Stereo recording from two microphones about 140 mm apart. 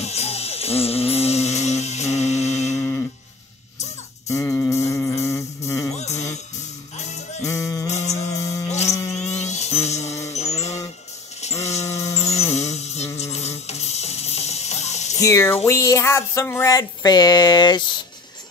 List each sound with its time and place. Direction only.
0.0 s music: 50° left (ahead or behind)
4.3 s music: 20° left (ahead or behind)
5.9 s music: 55° left (ahead or behind)
7.4 s music: 25° left (ahead or behind)
7.9 s music: 50° left (ahead or behind)
8.3 s music: 25° left (ahead or behind)
8.6 s music: 50° left (ahead or behind)
9.1 s dental drill: 55° left (ahead or behind)
10.3 s music: 55° left (ahead or behind)
12.2 s music: 50° left (ahead or behind)
15.1 s a sound: 20° left (ahead or behind)
16.7 s a sound: 30° left (ahead or behind)